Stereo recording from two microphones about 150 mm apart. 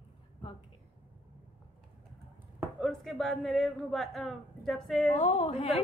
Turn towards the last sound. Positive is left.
turn(degrees=45)  # may be behind; listen again after turning